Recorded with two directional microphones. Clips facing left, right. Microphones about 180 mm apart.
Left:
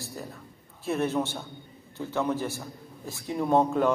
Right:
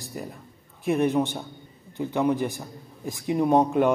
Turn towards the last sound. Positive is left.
turn(degrees=-15)  # may be behind; listen again after turning